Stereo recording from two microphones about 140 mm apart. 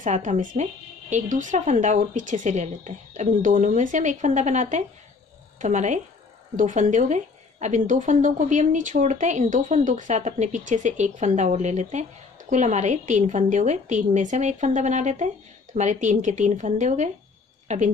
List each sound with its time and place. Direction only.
0.0 s a woman's voice: 60° right (ahead or behind)